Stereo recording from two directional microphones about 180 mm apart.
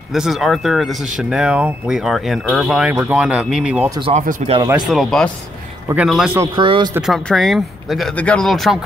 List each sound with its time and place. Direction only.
0.1 s speech: centre (ahead or behind)
4.1 s speech: 40° right (ahead or behind)
4.6 s speech: 25° right (ahead or behind)
4.8 s speech: centre (ahead or behind)
6.3 s speech: 20° right (ahead or behind)
6.9 s speech: centre (ahead or behind)